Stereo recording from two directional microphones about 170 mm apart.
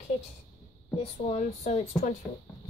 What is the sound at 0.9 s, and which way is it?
Speech, 40° left (ahead or behind).